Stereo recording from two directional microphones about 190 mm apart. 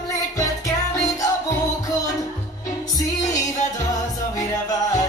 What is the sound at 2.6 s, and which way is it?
Music, 20° left (ahead or behind).